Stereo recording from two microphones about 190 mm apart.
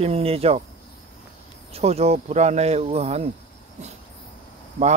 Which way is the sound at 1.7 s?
35° right (ahead or behind).